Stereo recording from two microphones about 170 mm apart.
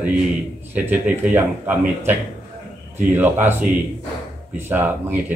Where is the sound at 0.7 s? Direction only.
10° right (ahead or behind).